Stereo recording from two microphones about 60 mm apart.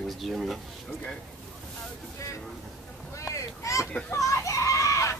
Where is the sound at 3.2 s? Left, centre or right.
Left.